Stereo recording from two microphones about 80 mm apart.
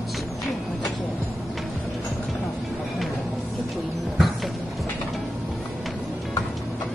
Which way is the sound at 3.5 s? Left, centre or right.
Centre.